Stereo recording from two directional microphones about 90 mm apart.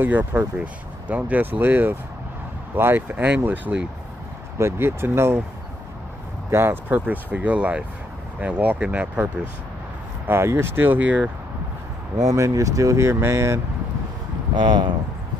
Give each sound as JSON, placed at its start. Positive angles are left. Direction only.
{"t": 0.0, "sound": "speech", "side_deg": -20}
{"t": 4.6, "sound": "speech", "side_deg": -30}
{"t": 6.5, "sound": "speech", "side_deg": -25}
{"t": 10.2, "sound": "speech", "side_deg": -30}
{"t": 12.3, "sound": "speech", "side_deg": -40}
{"t": 14.5, "sound": "speech", "side_deg": -60}